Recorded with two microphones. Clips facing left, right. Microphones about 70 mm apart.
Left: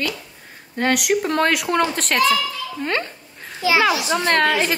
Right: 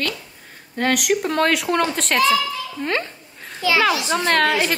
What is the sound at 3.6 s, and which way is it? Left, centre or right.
A child's voice, centre.